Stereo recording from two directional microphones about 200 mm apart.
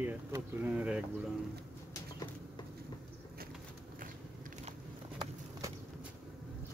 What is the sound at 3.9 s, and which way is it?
Biting, 40° right (ahead or behind).